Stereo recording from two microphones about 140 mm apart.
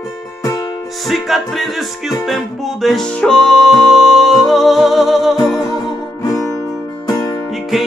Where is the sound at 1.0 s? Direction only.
Centre (ahead or behind).